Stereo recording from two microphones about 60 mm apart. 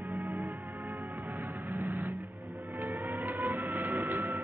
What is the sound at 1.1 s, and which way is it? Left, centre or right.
Music, right.